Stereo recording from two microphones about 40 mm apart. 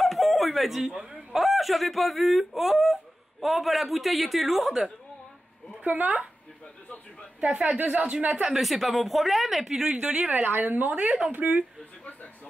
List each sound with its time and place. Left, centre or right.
0.0 s a sound: centre
1.3 s speech: centre
5.9 s a woman's voice: right
7.5 s speech: right
8.5 s speech: centre
9.8 s a woman's voice: right
10.4 s a woman's voice: right